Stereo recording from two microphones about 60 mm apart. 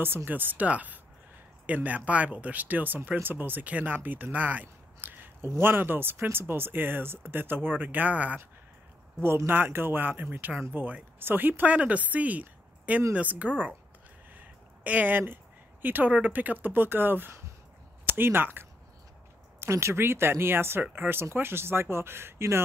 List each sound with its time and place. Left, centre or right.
0.0 s speech: right
9.5 s speech: right
11.7 s speech: right
14.3 s a sound: right
15.8 s speech: right
19.6 s speech: right